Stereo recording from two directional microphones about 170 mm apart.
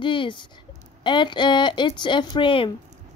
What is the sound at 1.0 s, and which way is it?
A woman's voice, 25° left (ahead or behind).